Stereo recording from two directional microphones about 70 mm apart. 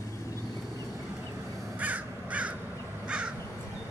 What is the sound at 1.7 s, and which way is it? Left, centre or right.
Crow, right.